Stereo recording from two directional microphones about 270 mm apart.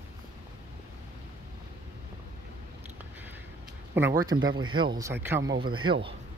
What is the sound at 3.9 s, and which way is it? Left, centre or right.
Speech, centre.